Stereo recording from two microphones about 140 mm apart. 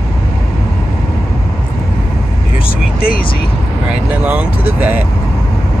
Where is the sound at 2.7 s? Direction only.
90° left.